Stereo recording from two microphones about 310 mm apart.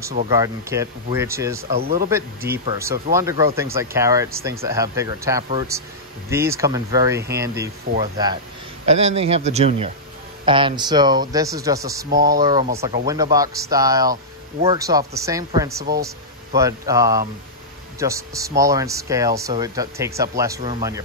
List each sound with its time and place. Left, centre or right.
0.3 s speech: centre
1.8 s speech: right
2.0 s speech: centre